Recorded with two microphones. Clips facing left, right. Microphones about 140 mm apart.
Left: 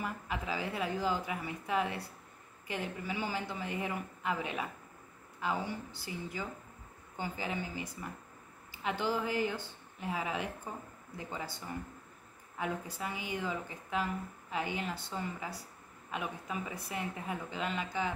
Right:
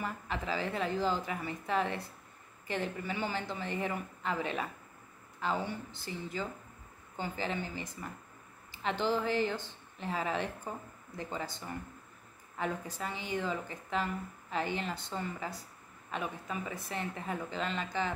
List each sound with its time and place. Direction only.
0.0 s a woman's voice: 10° left (ahead or behind)